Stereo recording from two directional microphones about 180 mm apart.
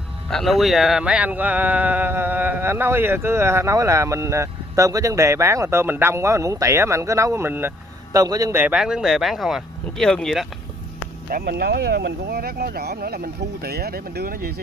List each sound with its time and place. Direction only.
0.3 s speech: centre (ahead or behind)
11.2 s speech: 55° right (ahead or behind)